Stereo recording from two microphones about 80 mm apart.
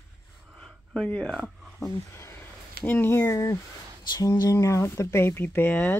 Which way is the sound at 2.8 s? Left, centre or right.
Left.